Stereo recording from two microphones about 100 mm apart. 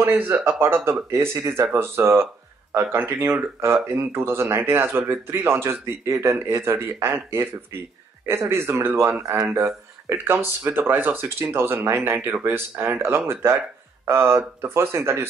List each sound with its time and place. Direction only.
0.0 s speech: 20° right (ahead or behind)